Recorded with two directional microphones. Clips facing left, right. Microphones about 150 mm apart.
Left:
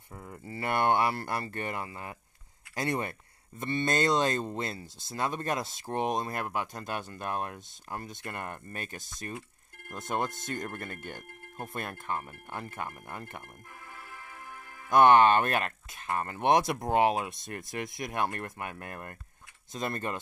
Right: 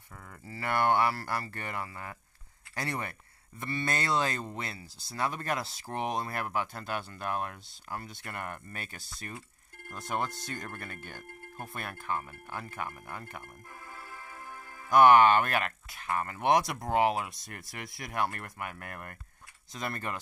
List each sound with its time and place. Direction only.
0.1 s speech: 25° left (ahead or behind)
13.8 s music: 35° right (ahead or behind)
14.9 s speech: 25° left (ahead or behind)